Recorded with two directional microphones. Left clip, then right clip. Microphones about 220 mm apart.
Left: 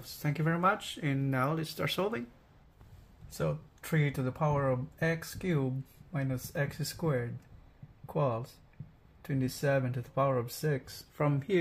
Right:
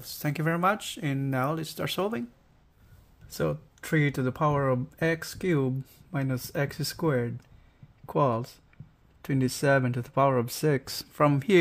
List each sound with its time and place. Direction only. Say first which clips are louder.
0.0 s speech: right 5 dB; 35° right (ahead or behind)
3.3 s speech: right 5 dB; 50° right (ahead or behind)
11.1 s speech: right 8 dB; 45° right (ahead or behind)